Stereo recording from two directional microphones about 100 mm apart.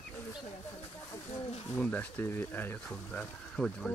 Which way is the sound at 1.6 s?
10° left (ahead or behind).